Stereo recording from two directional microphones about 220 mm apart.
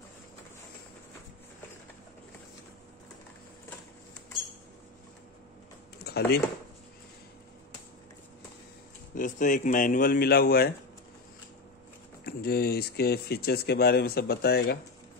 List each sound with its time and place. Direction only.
5.9 s a sound: 45° left (ahead or behind)
9.1 s speech: 35° left (ahead or behind)
12.3 s speech: 45° left (ahead or behind)